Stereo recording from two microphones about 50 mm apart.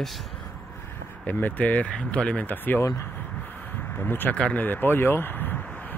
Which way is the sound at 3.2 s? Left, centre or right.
Left.